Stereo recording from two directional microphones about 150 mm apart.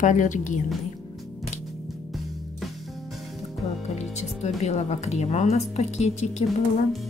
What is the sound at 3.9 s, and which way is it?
Speech, 50° left (ahead or behind).